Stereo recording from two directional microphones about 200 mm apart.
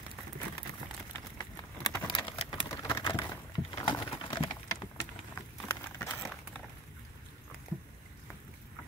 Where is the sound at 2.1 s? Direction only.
25° left (ahead or behind).